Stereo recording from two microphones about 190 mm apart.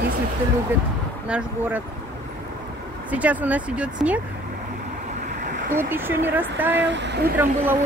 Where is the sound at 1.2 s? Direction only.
5° right (ahead or behind).